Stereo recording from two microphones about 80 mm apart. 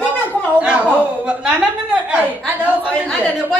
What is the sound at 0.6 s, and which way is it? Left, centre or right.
Speech, centre.